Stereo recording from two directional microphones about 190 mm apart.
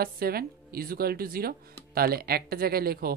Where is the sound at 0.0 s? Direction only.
50° right (ahead or behind).